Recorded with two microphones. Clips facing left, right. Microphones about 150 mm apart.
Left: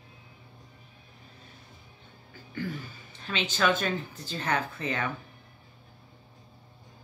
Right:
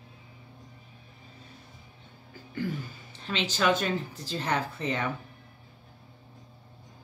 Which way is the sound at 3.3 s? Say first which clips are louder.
Right 1 dB; 30° right (ahead or behind).